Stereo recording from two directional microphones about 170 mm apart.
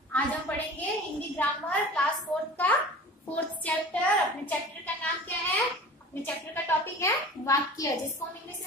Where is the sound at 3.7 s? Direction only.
10° left (ahead or behind).